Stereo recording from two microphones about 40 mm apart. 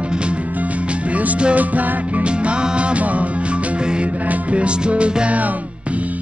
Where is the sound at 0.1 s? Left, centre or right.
Right.